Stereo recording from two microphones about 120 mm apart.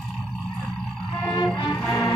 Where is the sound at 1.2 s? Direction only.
30° left (ahead or behind).